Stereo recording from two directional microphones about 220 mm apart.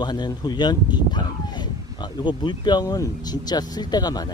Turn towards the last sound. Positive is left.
turn(degrees=20)  # may be behind; listen again after turning